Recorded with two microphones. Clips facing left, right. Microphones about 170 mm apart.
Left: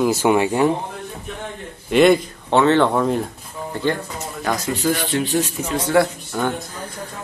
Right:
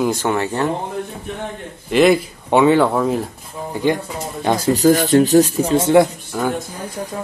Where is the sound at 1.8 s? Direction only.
Centre (ahead or behind).